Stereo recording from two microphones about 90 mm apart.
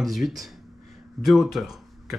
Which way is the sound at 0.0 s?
Centre (ahead or behind).